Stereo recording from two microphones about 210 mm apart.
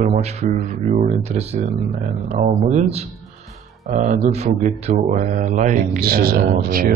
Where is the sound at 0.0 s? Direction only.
35° right (ahead or behind).